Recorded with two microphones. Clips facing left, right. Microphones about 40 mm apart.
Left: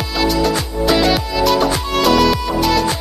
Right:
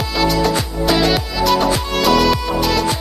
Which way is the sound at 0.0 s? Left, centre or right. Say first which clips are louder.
Even; centre.